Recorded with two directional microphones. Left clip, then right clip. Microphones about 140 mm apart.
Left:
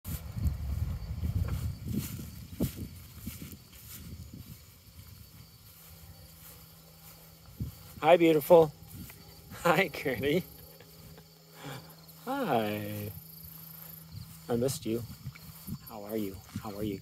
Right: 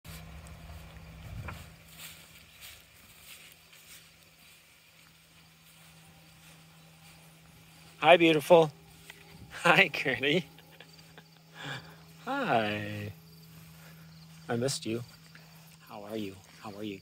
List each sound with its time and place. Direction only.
8.0 s speech: 20° left (ahead or behind)
11.5 s a sound: 15° left (ahead or behind)
14.4 s speech: 20° left (ahead or behind)
15.9 s speech: 35° left (ahead or behind)